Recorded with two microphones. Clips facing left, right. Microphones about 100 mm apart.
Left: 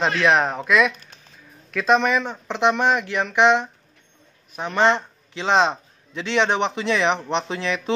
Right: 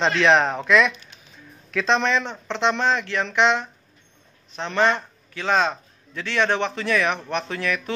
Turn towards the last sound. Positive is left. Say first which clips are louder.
# left 2 dB
turn(degrees=20)  # may be behind; listen again after turning